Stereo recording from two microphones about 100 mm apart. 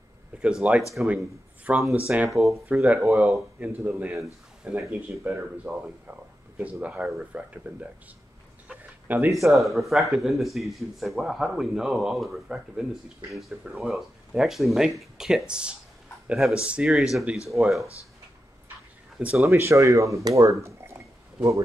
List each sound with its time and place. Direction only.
0.4 s a man's voice: 10° right (ahead or behind)
2.2 s speech: centre (ahead or behind)
2.7 s speech: 15° right (ahead or behind)
9.0 s speech: 15° right (ahead or behind)
9.3 s speech: centre (ahead or behind)
19.1 s speech: 5° right (ahead or behind)
19.4 s speech: 25° right (ahead or behind)
20.2 s a sound: 35° right (ahead or behind)